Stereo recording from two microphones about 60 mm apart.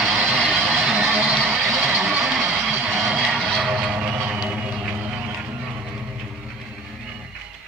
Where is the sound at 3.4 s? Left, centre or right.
Centre.